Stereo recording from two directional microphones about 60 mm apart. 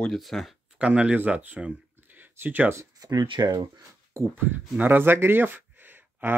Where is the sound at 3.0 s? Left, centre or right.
Right.